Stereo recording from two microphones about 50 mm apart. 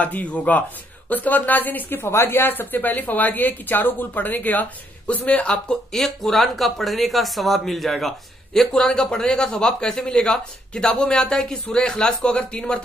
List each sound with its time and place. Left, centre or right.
0.0 s speech: left
5.9 s speech: centre